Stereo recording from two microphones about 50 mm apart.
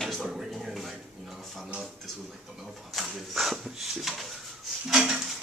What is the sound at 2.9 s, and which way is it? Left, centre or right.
Speech, centre.